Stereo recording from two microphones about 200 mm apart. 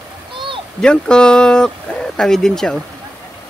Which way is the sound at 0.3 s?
25° right (ahead or behind).